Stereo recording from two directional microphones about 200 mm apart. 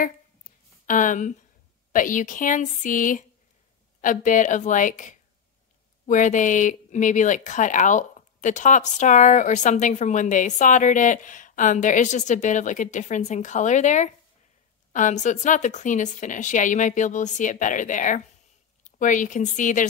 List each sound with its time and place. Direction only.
0.8 s speech: 40° left (ahead or behind)